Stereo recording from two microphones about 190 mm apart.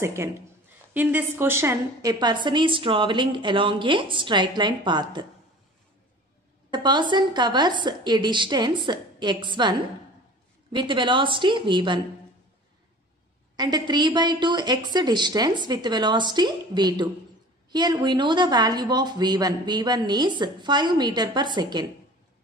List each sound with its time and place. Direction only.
0.0 s a woman's voice: 15° right (ahead or behind)
6.7 s a woman's voice: 25° right (ahead or behind)
13.6 s a woman's voice: 20° right (ahead or behind)